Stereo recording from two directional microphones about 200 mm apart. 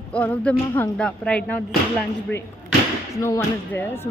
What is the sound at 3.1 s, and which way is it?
Speech, 15° left (ahead or behind).